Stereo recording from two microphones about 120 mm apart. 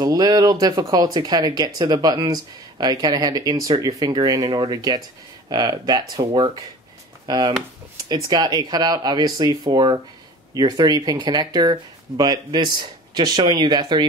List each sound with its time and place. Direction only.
0.0 s speech: 30° right (ahead or behind)